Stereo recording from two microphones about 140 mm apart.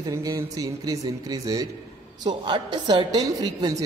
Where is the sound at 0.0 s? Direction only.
25° right (ahead or behind).